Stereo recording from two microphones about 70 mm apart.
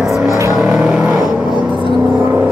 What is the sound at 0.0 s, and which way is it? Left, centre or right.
Vehicle, centre.